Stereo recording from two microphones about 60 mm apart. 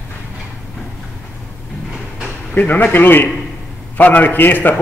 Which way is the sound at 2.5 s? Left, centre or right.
Left.